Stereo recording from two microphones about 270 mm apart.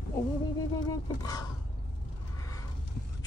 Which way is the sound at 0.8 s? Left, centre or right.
Centre.